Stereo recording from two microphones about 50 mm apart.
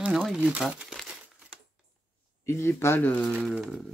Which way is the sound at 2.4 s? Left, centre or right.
Left.